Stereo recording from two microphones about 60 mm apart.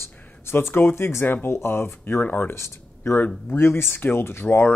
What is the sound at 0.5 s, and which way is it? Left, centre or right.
Speech, left.